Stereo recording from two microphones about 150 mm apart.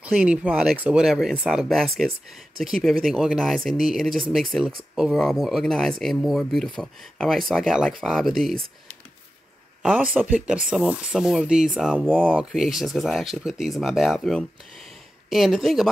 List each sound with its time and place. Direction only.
0.0 s speech: 5° right (ahead or behind)
9.8 s speech: 10° right (ahead or behind)